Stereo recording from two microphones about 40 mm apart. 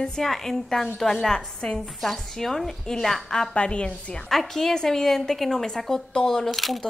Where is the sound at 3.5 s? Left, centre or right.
Left.